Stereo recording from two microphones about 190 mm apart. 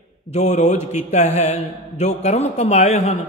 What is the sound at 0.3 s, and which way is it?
Opera, 35° left (ahead or behind).